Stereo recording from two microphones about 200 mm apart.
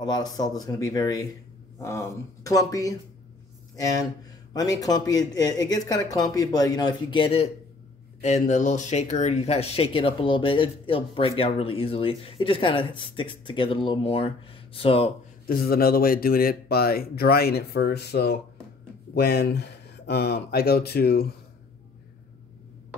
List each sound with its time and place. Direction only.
0.0 s speech: 20° left (ahead or behind)
8.2 s speech: 35° left (ahead or behind)
15.4 s speech: 50° left (ahead or behind)